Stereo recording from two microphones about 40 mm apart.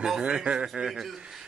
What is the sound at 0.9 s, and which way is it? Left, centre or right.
Speech, centre.